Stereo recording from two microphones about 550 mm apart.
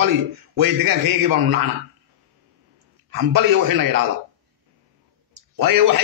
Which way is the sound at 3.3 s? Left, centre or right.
Right.